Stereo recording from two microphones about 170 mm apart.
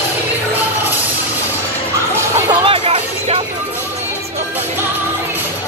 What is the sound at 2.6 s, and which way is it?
Music, 30° right (ahead or behind).